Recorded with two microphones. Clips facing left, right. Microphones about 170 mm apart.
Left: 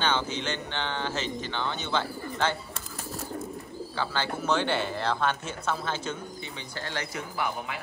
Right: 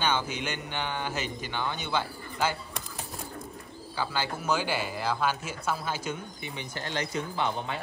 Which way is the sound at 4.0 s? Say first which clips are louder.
Left 1 dB; 10° right (ahead or behind).